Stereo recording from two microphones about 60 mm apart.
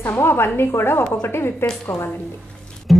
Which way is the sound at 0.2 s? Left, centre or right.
Left.